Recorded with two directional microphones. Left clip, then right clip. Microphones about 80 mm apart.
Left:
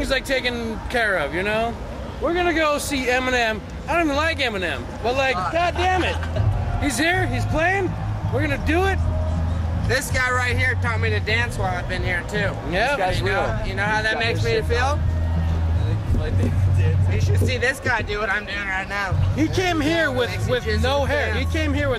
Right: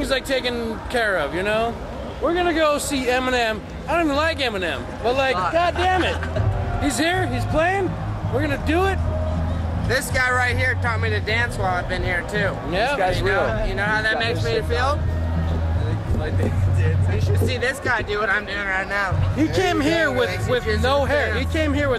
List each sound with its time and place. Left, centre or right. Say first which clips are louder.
0.0 s a man's voice: even; left
16.8 s a man's voice: right 2 dB; left